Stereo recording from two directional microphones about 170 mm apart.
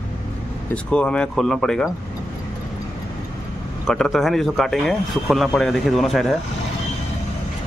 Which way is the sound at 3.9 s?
Centre (ahead or behind).